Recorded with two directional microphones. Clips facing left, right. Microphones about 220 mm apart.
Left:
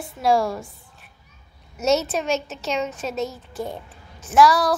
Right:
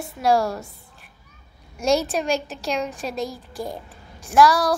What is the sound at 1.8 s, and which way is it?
A woman's voice, 5° left (ahead or behind).